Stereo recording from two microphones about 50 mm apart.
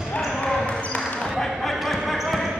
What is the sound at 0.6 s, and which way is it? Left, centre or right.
Basketball bounce, left.